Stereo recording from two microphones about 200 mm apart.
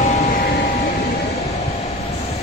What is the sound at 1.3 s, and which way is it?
Train, 35° left (ahead or behind).